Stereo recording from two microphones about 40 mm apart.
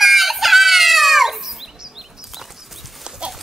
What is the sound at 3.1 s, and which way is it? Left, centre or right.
Livestock, centre.